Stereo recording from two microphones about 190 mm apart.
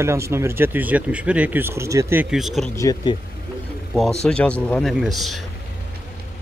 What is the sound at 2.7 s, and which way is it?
Speech, 15° left (ahead or behind).